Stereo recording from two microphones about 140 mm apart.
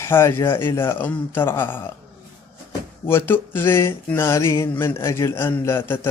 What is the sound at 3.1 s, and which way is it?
A man's voice, 15° left (ahead or behind).